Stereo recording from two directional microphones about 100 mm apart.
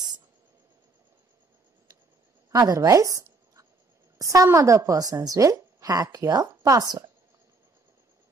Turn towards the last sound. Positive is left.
turn(degrees=-40)  # may be behind; listen again after turning